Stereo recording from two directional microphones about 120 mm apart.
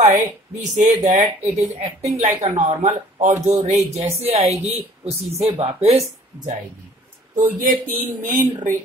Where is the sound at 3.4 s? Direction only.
65° right (ahead or behind).